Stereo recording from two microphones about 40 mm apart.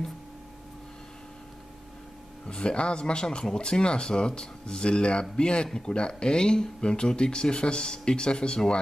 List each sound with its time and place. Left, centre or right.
2.4 s speech: left